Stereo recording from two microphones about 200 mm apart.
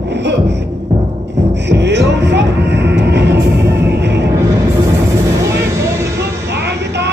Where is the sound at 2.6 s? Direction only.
60° right (ahead or behind).